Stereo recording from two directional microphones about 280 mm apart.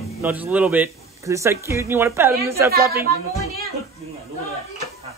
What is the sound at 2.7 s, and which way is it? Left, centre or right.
Speech, right.